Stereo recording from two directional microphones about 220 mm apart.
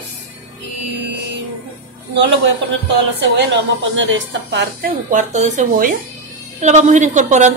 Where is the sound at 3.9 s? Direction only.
55° right (ahead or behind).